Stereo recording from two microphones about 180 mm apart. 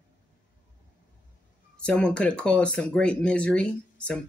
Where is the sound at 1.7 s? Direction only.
5° left (ahead or behind).